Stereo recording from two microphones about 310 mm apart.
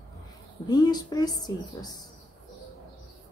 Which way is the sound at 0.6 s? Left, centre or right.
Centre.